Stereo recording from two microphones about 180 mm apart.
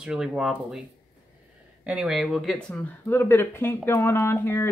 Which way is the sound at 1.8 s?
5° right (ahead or behind).